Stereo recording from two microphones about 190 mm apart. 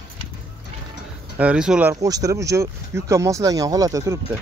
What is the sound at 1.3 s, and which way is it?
Speech, 5° right (ahead or behind).